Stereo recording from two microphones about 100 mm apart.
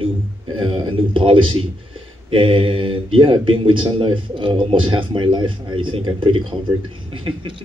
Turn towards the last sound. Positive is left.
turn(degrees=-60)  # may be behind; listen again after turning